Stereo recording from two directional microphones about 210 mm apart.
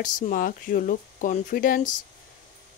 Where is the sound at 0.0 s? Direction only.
40° left (ahead or behind).